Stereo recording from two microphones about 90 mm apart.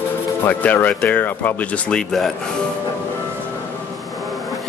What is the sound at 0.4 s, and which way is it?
Speech, 20° left (ahead or behind).